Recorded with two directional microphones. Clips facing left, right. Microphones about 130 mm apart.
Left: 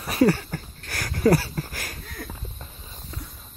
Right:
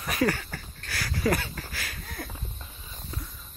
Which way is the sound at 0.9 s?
50° left (ahead or behind).